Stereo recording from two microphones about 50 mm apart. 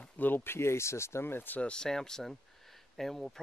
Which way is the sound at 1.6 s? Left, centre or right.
Centre.